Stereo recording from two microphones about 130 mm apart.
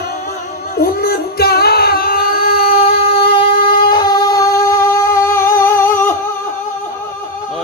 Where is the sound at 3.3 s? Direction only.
40° left (ahead or behind); by 6.2 s 20° left (ahead or behind).